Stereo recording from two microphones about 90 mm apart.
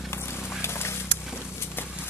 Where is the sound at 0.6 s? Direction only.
30° left (ahead or behind).